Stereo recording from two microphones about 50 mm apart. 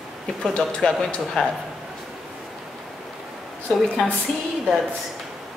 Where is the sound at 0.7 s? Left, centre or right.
Centre.